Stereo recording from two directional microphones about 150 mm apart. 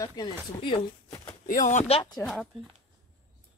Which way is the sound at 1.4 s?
55° left (ahead or behind).